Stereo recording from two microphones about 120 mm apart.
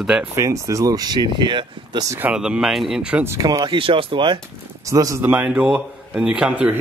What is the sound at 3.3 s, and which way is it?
Speech, 25° right (ahead or behind).